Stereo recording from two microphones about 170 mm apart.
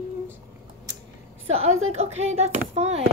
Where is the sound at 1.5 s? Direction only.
40° right (ahead or behind).